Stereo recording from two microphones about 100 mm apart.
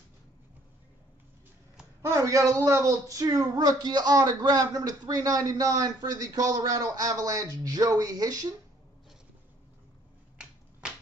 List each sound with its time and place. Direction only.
2.0 s speech: 30° right (ahead or behind)
10.3 s finger snapping: 10° right (ahead or behind)